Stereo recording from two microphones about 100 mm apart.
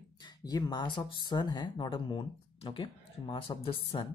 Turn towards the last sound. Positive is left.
turn(degrees=60)  # may be behind; listen again after turning